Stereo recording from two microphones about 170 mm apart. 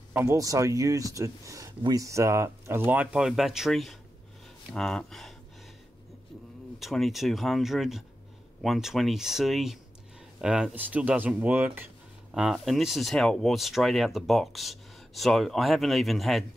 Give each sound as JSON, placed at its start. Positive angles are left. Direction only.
{"t": 0.1, "sound": "speech", "side_deg": -15}
{"t": 6.8, "sound": "speech", "side_deg": 0}